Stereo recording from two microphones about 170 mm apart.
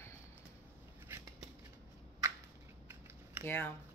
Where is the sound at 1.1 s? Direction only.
15° right (ahead or behind).